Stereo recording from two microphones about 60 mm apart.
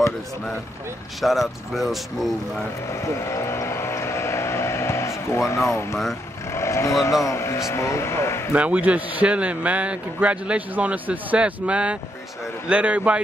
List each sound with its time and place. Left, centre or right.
1.2 s speech: centre
3.0 s vehicle: left
6.5 s speech: left
8.5 s a man's voice: right